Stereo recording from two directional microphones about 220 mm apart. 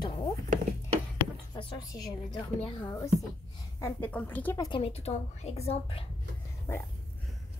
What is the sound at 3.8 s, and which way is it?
A woman's voice, 10° left (ahead or behind).